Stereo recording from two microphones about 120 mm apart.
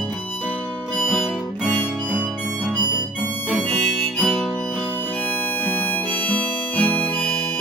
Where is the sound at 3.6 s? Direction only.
15° left (ahead or behind).